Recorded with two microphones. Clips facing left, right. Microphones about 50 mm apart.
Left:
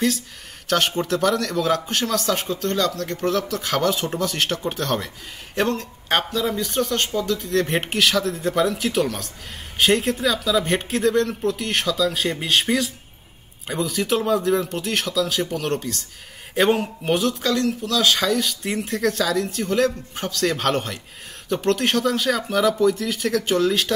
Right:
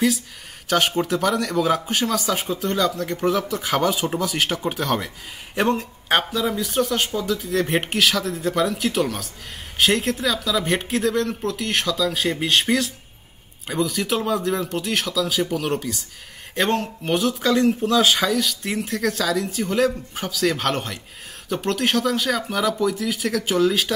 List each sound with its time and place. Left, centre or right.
0.7 s speech: centre
16.5 s speech: centre
17.6 s speech: right
18.0 s speech: centre